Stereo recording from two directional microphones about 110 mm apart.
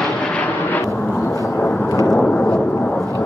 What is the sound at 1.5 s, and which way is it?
Vehicle, 10° left (ahead or behind).